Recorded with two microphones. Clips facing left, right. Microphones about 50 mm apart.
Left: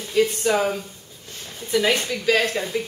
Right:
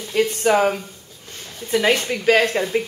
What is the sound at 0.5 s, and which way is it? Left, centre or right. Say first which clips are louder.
Speech: right 4 dB; right.